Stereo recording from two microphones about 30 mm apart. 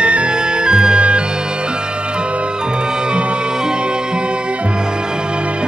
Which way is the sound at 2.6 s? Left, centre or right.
Right.